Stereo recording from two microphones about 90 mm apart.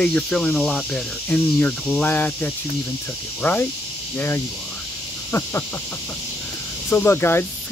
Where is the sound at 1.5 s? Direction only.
15° left (ahead or behind).